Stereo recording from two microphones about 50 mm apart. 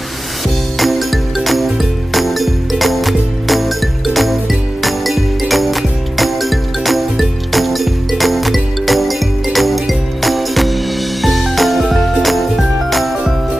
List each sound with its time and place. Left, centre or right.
0.7 s music: centre